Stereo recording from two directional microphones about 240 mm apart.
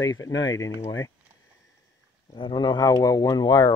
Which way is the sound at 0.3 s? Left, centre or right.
Left.